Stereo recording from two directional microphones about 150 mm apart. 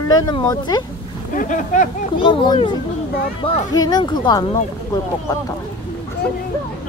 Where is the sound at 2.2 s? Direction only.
35° left (ahead or behind).